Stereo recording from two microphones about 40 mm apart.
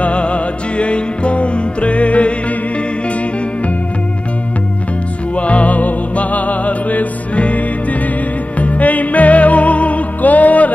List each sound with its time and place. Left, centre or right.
0.0 s music: left
5.3 s music: left